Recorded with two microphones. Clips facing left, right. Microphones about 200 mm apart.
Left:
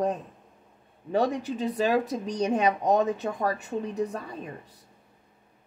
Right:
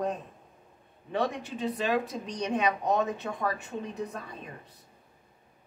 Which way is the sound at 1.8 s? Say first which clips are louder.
Left 5 dB; 40° left (ahead or behind).